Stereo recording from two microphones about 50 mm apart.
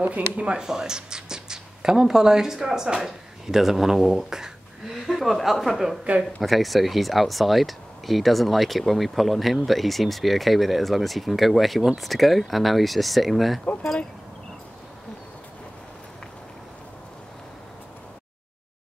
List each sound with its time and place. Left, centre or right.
0.0 s speech: right
0.7 s speech: centre